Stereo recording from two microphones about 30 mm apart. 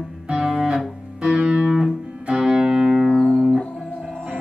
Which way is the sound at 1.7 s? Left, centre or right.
Centre.